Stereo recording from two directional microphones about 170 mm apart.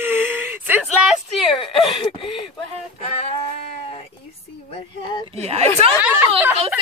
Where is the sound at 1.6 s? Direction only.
35° left (ahead or behind).